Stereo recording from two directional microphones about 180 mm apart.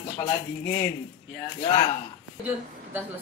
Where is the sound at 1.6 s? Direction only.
30° left (ahead or behind).